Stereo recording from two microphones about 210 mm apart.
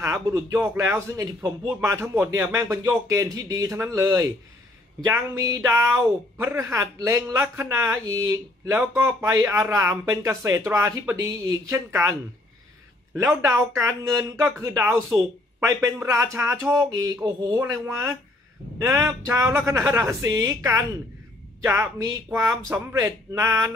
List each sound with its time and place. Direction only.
0.0 s a man's voice: 15° right (ahead or behind)
13.3 s a man's voice: 15° right (ahead or behind)